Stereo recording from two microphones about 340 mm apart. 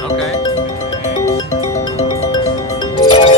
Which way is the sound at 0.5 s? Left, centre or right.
Centre.